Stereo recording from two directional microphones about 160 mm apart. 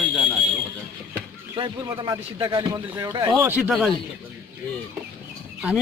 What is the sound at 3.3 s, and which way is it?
Speech, 10° right (ahead or behind).